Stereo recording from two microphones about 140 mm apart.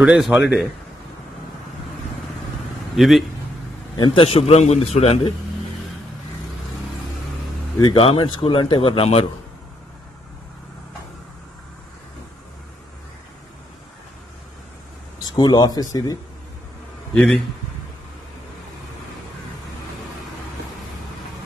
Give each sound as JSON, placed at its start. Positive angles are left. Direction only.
{"t": 0.0, "sound": "a man's voice", "side_deg": -10}
{"t": 3.0, "sound": "speech", "side_deg": 0}
{"t": 3.9, "sound": "a man's voice", "side_deg": 35}
{"t": 7.8, "sound": "speech", "side_deg": 40}
{"t": 15.2, "sound": "speech", "side_deg": 30}
{"t": 17.1, "sound": "speech", "side_deg": 5}